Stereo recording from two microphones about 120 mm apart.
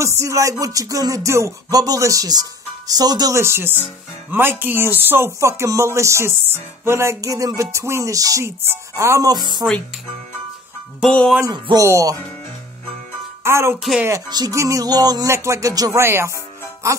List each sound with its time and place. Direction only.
0.0 s speech: 25° right (ahead or behind)
11.1 s speech: 10° left (ahead or behind)
11.5 s speech: 40° right (ahead or behind)
11.8 s speech: 25° right (ahead or behind)
13.4 s speech: 20° right (ahead or behind)